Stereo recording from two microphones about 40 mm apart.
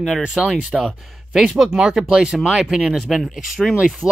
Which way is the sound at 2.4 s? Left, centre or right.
Centre.